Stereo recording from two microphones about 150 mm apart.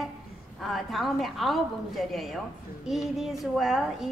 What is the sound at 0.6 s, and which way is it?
A woman's voice, centre (ahead or behind).